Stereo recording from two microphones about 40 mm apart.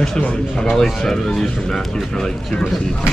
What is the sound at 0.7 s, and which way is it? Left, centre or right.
Speech, centre.